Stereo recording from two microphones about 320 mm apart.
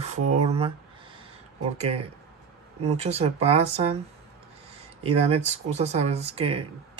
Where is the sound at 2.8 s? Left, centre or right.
Centre.